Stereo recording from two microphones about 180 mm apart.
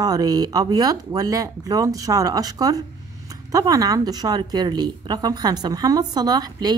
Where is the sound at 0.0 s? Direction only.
20° right (ahead or behind).